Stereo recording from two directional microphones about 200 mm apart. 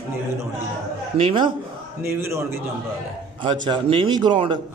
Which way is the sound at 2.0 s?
15° right (ahead or behind).